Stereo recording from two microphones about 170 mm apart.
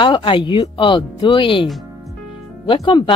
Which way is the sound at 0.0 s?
30° left (ahead or behind).